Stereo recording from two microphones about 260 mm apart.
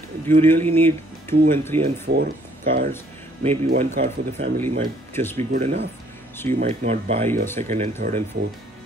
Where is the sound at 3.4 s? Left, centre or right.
Right.